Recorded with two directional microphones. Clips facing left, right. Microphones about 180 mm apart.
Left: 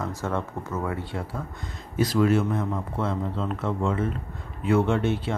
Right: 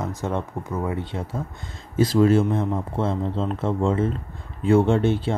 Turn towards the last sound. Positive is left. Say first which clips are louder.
# right 4 dB
turn(degrees=-30)  # may be behind; listen again after turning